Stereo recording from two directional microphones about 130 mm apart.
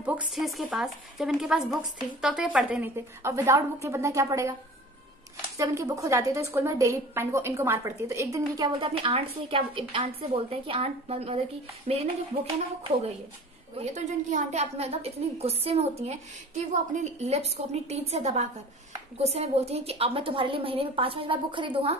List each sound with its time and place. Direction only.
0.3 s a woman's voice: centre (ahead or behind)
3.2 s a woman's voice: 20° right (ahead or behind)
5.6 s a woman's voice: 25° right (ahead or behind); by 11.3 s 50° right (ahead or behind)
11.9 s a woman's voice: 60° right (ahead or behind)
13.7 s a woman's voice: 65° right (ahead or behind); by 21.9 s 40° right (ahead or behind)